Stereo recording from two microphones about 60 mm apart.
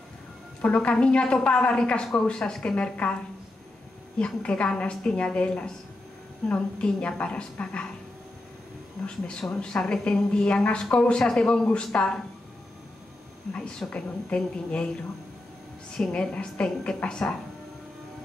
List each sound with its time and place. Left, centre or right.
0.6 s a woman's voice: left
4.2 s a woman's voice: centre
9.6 s a woman's voice: centre
13.5 s a woman's voice: centre
16.1 s a woman's voice: centre